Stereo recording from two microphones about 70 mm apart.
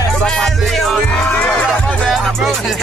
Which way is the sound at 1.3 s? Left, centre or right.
Centre.